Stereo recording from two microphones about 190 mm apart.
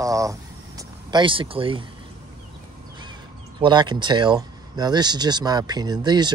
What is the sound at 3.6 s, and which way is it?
Speech, 25° right (ahead or behind).